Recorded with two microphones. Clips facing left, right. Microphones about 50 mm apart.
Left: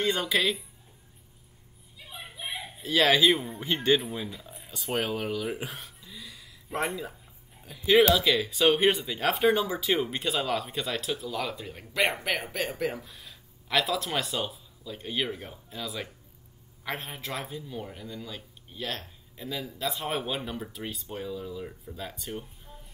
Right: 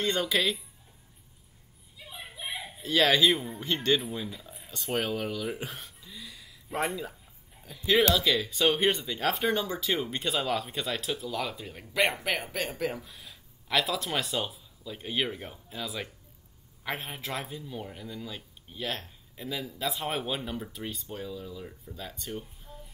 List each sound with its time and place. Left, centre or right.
0.0 s speech: centre
2.0 s speech: centre